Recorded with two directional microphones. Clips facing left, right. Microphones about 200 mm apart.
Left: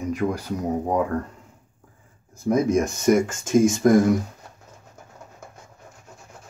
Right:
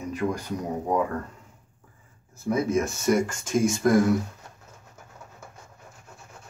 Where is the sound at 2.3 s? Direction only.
15° left (ahead or behind).